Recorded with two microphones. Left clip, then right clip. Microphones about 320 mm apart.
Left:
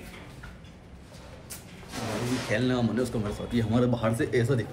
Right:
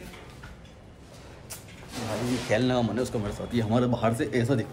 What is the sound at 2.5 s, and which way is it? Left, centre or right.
A man's voice, centre.